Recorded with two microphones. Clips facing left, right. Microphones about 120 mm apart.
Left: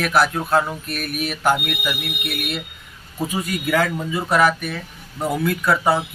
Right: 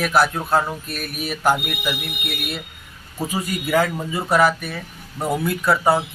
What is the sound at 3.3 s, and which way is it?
A man's voice, 15° right (ahead or behind).